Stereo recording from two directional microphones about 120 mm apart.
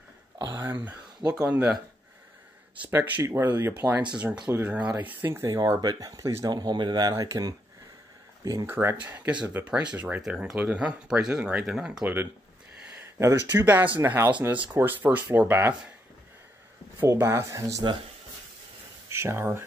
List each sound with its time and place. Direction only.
0.6 s speech: 15° right (ahead or behind)
2.9 s speech: 15° right (ahead or behind)
5.6 s speech: 35° right (ahead or behind)
9.0 s speech: 15° right (ahead or behind)
17.0 s speech: 20° right (ahead or behind)
19.0 s speech: 20° right (ahead or behind)